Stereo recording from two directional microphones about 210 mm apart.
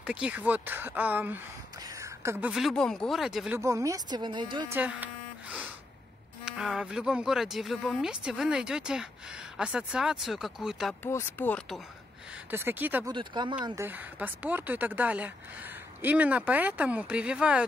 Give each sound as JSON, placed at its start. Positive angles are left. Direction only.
{"t": 0.0, "sound": "speech", "side_deg": -5}
{"t": 4.7, "sound": "speech", "side_deg": -5}
{"t": 11.1, "sound": "speech", "side_deg": 10}
{"t": 12.4, "sound": "speech", "side_deg": -10}
{"t": 13.1, "sound": "speech", "side_deg": -20}
{"t": 13.7, "sound": "speech", "side_deg": -10}